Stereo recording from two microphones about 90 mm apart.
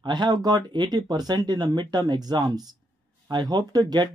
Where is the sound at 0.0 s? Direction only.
55° right (ahead or behind).